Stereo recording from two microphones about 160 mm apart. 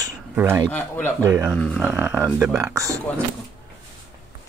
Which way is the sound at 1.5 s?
10° left (ahead or behind).